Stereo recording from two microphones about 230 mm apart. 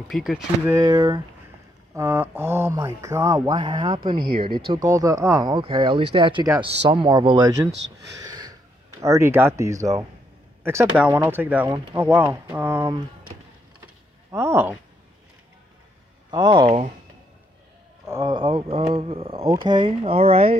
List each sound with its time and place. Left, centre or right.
0.1 s speech: centre
0.7 s speech: centre
4.2 s speech: right
4.6 s speech: centre
8.2 s a sound: centre
9.0 s speech: centre
14.3 s speech: centre
16.3 s speech: centre
18.0 s speech: centre